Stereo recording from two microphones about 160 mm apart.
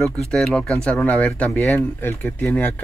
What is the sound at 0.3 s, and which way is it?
Speech, 5° left (ahead or behind).